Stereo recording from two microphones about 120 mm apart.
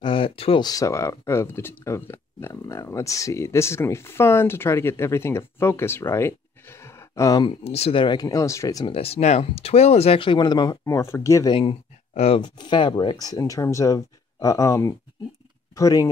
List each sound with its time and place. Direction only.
0.0 s speech: 45° left (ahead or behind)
0.7 s speech: 30° left (ahead or behind)
7.6 s speech: 55° left (ahead or behind)
8.0 s speech: 35° left (ahead or behind)
8.9 s speech: 60° left (ahead or behind); by 10.8 s 35° left (ahead or behind)
10.9 s speech: 25° left (ahead or behind)
12.1 s speech: 60° left (ahead or behind)
12.4 s speech: 40° left (ahead or behind)